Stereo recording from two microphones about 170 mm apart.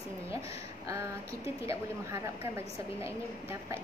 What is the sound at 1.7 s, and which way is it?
A woman's voice, 15° right (ahead or behind).